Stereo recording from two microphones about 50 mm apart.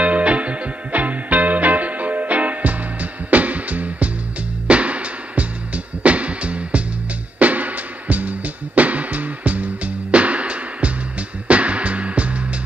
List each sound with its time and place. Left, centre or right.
0.0 s music: right